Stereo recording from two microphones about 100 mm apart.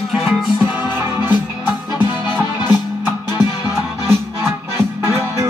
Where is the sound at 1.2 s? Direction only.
20° right (ahead or behind).